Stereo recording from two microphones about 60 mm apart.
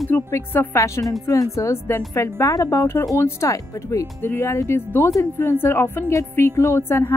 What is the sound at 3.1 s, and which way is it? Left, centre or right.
Speech, left.